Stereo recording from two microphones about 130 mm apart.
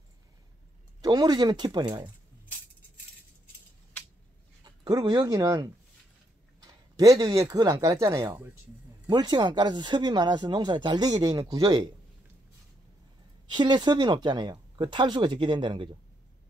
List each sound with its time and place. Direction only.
1.0 s speech: 30° right (ahead or behind)
4.6 s speech: 35° right (ahead or behind)
13.5 s speech: 35° right (ahead or behind)